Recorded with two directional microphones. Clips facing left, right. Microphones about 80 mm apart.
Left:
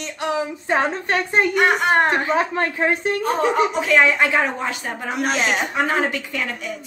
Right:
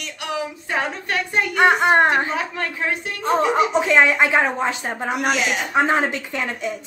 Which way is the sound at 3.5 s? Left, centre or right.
Right.